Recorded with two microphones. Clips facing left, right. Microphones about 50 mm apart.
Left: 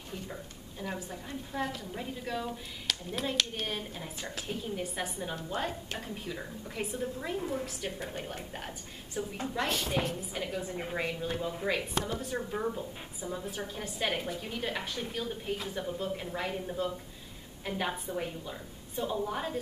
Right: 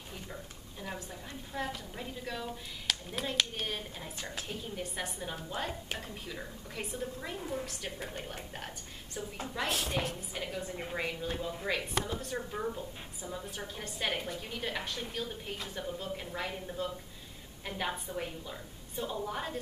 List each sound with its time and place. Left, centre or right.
0.1 s a woman's voice: centre